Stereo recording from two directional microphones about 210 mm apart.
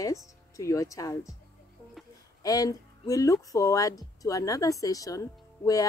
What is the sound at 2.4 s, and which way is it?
Speech, 15° left (ahead or behind).